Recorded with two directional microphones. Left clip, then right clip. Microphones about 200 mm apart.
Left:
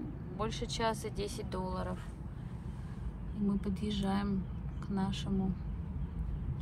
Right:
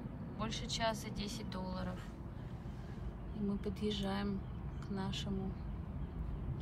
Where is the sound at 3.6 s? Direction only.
5° right (ahead or behind).